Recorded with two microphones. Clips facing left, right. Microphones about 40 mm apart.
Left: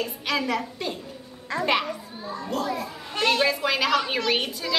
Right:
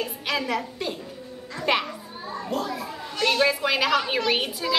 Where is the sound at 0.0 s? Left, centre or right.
Centre.